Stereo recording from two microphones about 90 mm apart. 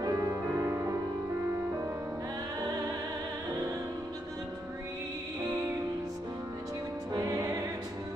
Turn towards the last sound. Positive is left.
turn(degrees=-35)  # may be behind; listen again after turning